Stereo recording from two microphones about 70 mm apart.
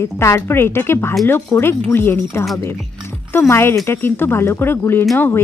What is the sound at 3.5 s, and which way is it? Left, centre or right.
Speech, left.